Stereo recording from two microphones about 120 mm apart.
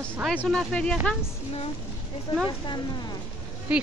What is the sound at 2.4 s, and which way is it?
Speech, 40° left (ahead or behind).